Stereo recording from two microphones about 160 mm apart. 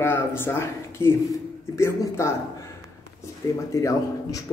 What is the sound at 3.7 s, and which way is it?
Speech, 20° left (ahead or behind).